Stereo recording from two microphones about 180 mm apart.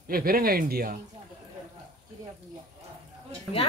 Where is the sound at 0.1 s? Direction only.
55° right (ahead or behind).